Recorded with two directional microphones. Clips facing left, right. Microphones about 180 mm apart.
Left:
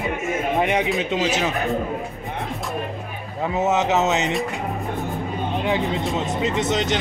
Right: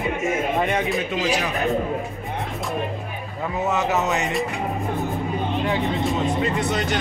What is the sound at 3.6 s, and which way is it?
Speech, 20° left (ahead or behind).